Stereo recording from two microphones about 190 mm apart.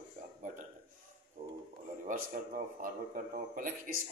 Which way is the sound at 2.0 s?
45° right (ahead or behind).